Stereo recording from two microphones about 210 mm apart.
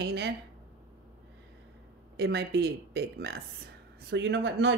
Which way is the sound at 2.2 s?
50° right (ahead or behind).